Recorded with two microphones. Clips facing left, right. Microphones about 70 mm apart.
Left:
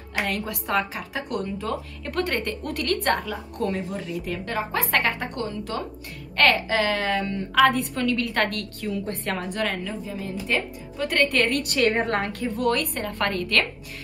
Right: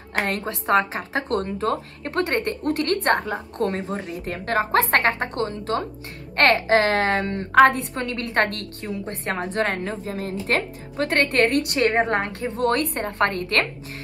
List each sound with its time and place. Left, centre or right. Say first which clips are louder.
0.1 s a woman's voice: right 2 dB; right
11.2 s a woman's voice: right 3 dB; right